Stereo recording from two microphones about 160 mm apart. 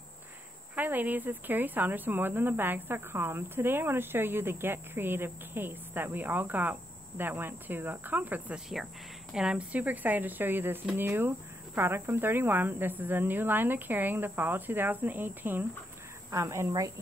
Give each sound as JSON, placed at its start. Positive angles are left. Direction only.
{"t": 0.7, "sound": "a woman's voice", "side_deg": -10}